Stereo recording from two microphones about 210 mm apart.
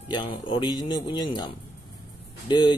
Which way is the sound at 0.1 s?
20° left (ahead or behind).